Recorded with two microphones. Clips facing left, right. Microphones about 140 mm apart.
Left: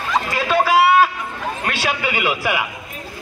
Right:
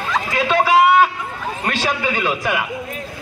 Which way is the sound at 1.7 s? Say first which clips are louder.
Right 2 dB; 10° left (ahead or behind).